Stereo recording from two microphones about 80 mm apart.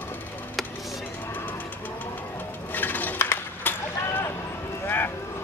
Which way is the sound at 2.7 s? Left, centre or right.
Left.